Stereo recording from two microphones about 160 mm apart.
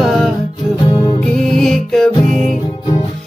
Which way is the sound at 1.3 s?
5° left (ahead or behind).